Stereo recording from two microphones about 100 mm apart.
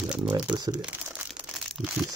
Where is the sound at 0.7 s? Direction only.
15° right (ahead or behind).